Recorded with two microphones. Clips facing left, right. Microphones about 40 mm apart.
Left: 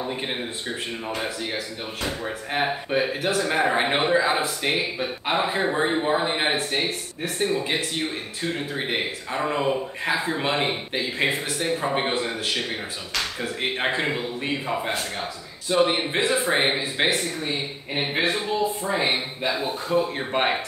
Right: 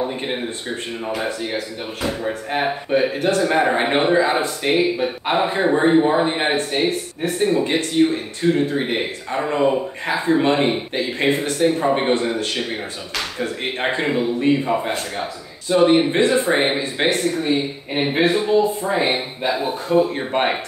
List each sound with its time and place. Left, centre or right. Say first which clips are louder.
0.0 s speech: right 5 dB; centre
17.4 s speech: right 8 dB; centre